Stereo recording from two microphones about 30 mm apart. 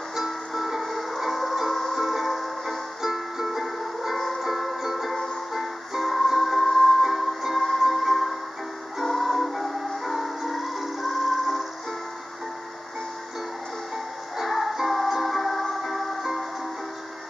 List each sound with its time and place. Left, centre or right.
0.1 s music: centre
14.3 s music: centre